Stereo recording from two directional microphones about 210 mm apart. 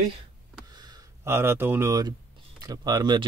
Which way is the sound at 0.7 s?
20° right (ahead or behind).